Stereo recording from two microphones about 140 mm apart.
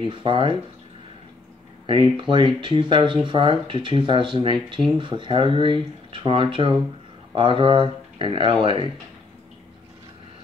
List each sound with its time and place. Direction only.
0.0 s speech: 40° right (ahead or behind)
1.9 s speech: 35° right (ahead or behind)